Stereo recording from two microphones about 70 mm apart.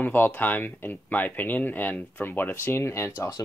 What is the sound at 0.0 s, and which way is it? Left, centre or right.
Speech, left.